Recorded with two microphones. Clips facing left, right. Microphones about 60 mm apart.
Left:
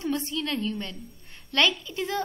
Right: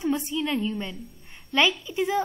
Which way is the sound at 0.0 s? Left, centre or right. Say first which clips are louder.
Right 3 dB; centre.